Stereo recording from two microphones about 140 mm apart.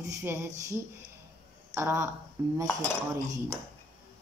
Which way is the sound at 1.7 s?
20° right (ahead or behind).